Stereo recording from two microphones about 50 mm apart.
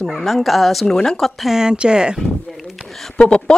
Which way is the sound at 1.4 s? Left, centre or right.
Centre.